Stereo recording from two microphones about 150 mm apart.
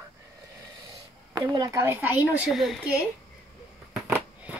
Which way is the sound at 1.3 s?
25° right (ahead or behind).